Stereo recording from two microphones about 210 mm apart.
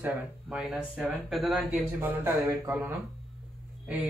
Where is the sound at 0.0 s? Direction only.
5° right (ahead or behind).